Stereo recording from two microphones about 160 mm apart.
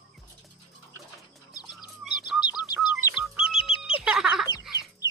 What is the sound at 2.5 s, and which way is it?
Bird, 25° left (ahead or behind).